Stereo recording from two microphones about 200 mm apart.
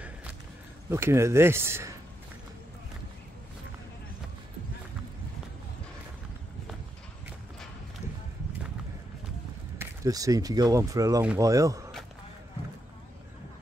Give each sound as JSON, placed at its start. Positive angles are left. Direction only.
{"t": 0.0, "sound": "a sound", "side_deg": -5}
{"t": 0.8, "sound": "speech", "side_deg": -10}
{"t": 9.8, "sound": "speech", "side_deg": -15}